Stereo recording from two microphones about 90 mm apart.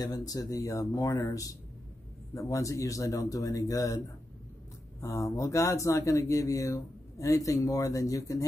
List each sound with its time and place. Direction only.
0.0 s speech: 45° left (ahead or behind)
5.0 s speech: 35° left (ahead or behind)